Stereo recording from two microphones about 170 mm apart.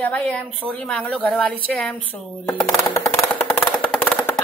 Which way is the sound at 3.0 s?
10° left (ahead or behind).